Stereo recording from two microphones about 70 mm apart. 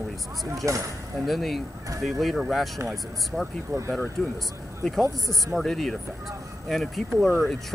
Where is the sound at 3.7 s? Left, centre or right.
Right.